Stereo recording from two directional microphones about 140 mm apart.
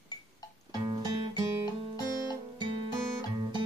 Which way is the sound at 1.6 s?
30° left (ahead or behind).